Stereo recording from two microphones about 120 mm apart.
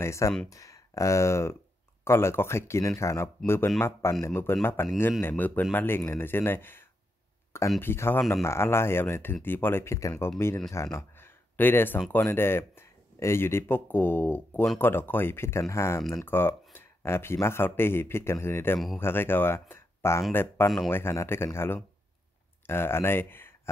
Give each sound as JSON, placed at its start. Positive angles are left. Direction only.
{"t": 0.0, "sound": "speech", "side_deg": 25}
{"t": 7.8, "sound": "speech", "side_deg": 20}
{"t": 16.0, "sound": "speech", "side_deg": 0}
{"t": 16.3, "sound": "speech", "side_deg": 20}